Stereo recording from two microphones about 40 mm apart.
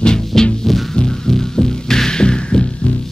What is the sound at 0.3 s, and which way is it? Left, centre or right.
Music, centre.